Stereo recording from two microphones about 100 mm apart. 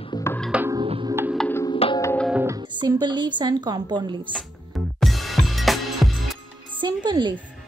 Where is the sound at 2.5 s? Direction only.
45° right (ahead or behind).